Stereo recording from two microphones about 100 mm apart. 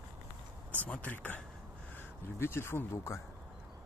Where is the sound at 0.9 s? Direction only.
15° left (ahead or behind).